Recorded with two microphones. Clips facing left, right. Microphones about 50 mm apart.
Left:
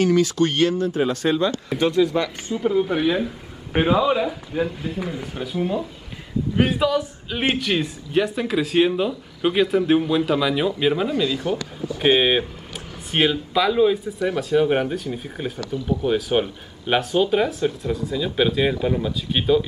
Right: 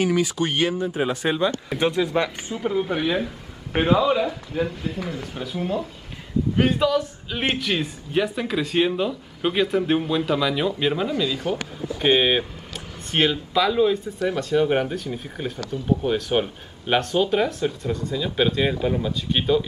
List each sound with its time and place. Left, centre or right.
0.0 s speech: centre
2.6 s a man's voice: centre